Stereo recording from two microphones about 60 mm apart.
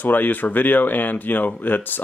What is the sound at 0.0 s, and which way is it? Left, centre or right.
Speech, left.